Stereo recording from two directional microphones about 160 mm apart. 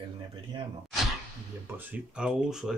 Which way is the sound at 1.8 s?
10° right (ahead or behind).